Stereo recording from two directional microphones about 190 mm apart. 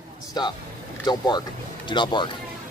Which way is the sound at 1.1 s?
25° left (ahead or behind).